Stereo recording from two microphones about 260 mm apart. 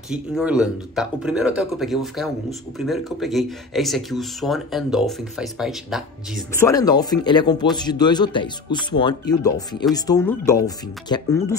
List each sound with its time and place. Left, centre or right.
0.1 s speech: centre
6.6 s speech: centre